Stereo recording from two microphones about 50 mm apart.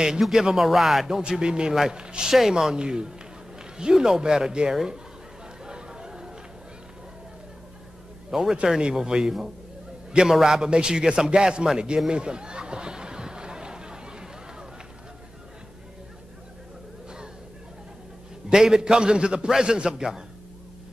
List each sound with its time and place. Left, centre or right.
0.0 s a man's voice: centre
5.7 s chatter: centre
8.3 s a man's voice: centre
10.4 s a man's voice: centre
12.1 s a sound: centre
18.5 s a man's voice: centre